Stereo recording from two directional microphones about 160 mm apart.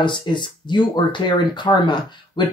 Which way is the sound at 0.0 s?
30° left (ahead or behind).